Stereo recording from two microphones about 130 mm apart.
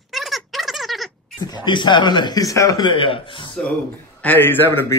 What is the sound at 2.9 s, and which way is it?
Speech, 40° left (ahead or behind).